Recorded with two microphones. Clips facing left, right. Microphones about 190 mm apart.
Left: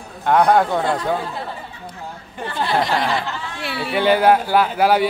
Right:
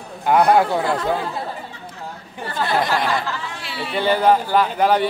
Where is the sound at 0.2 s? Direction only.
5° right (ahead or behind).